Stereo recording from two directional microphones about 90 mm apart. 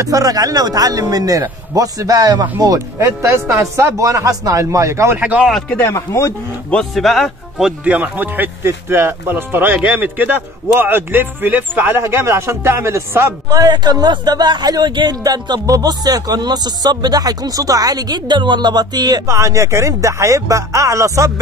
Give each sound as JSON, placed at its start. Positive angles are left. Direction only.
{"t": 0.0, "sound": "speech", "side_deg": -40}
{"t": 5.1, "sound": "speech", "side_deg": -15}
{"t": 5.7, "sound": "speech", "side_deg": 20}
{"t": 5.9, "sound": "speech", "side_deg": 35}
{"t": 6.7, "sound": "speech", "side_deg": 5}
{"t": 7.8, "sound": "a man's voice", "side_deg": -15}
{"t": 13.5, "sound": "speech", "side_deg": -45}
{"t": 19.3, "sound": "speech", "side_deg": -35}